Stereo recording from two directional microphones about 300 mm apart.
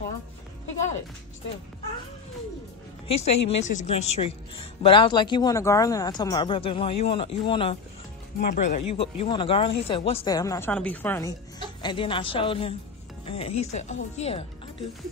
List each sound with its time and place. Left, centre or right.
3.1 s a woman's voice: centre